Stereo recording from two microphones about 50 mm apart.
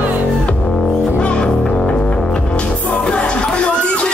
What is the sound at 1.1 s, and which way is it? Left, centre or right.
Music, left.